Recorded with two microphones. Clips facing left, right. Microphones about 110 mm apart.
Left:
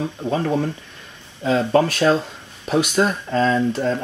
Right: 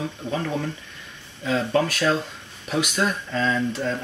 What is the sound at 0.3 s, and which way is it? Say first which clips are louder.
Speech: left 6 dB; 35° left (ahead or behind).